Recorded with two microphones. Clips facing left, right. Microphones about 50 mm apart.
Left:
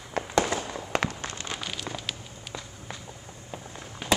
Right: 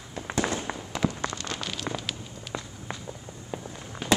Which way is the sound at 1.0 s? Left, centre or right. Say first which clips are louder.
Right 2 dB; left.